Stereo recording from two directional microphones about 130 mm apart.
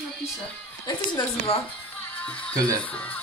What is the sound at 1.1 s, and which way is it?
Speech, 40° left (ahead or behind).